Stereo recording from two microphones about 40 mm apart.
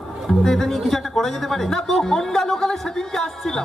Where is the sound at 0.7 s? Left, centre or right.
Centre.